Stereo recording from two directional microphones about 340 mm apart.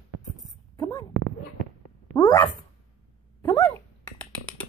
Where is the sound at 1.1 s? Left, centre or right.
Right.